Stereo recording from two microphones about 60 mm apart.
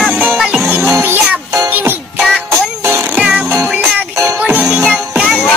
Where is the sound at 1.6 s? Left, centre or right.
Right.